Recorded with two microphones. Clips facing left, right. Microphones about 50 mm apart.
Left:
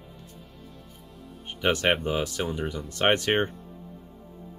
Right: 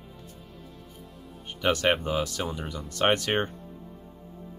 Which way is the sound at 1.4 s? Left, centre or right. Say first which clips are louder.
Even; centre.